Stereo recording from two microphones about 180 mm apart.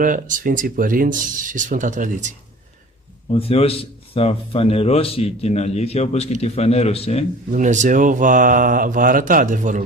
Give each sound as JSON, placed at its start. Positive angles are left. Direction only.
{"t": 0.0, "sound": "speech", "side_deg": -50}
{"t": 3.3, "sound": "a man's voice", "side_deg": 35}
{"t": 7.5, "sound": "speech", "side_deg": -45}